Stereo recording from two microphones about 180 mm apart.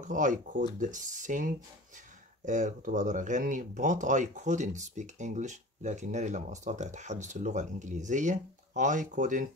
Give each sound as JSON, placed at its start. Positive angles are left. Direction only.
{"t": 0.0, "sound": "speech", "side_deg": -45}